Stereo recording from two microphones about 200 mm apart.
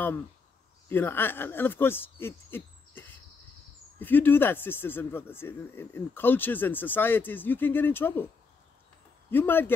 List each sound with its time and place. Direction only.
0.8 s speech: 10° left (ahead or behind)
9.3 s speech: 10° left (ahead or behind)